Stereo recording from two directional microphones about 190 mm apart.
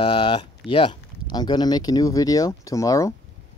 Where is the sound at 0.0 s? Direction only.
25° left (ahead or behind).